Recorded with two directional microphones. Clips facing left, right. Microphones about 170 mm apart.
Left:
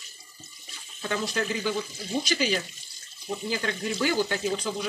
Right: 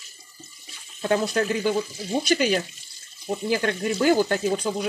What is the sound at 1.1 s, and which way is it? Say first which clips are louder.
Speech: right 6 dB; 50° right (ahead or behind).